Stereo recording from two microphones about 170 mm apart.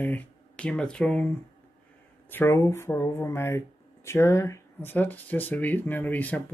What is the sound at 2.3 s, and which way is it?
Speech, 15° left (ahead or behind).